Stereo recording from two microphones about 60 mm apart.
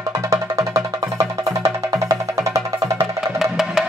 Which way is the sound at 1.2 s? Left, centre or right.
Right.